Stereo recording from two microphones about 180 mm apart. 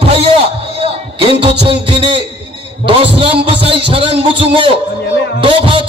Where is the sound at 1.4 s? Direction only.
30° right (ahead or behind).